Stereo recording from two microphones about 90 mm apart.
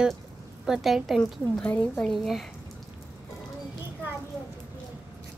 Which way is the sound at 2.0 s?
Centre (ahead or behind).